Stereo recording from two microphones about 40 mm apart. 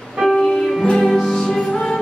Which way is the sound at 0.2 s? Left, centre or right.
Centre.